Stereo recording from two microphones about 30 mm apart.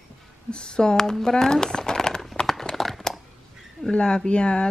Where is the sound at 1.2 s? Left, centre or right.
Left.